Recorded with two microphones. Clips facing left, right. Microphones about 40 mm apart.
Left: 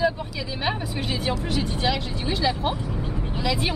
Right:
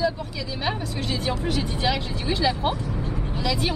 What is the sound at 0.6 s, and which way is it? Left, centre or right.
Speech, centre.